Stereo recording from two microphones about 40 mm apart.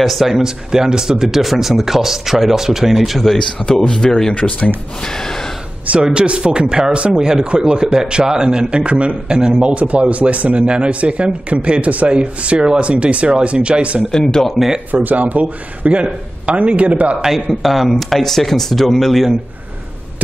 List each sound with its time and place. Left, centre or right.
0.0 s speech: centre
3.3 s speech: centre
3.9 s gasp: centre
4.4 s speech: left
5.0 s gasp: centre
5.9 s speech: right
14.1 s gasp: centre
15.0 s a man's voice: right
17.3 s speech: centre